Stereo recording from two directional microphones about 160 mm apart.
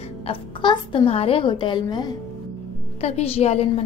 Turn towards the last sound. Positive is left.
turn(degrees=40)  # may be behind; listen again after turning